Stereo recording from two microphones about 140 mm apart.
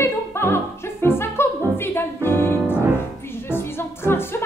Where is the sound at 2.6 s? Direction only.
10° right (ahead or behind).